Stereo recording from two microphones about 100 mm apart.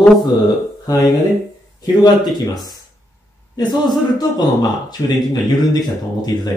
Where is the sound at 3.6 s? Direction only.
45° left (ahead or behind).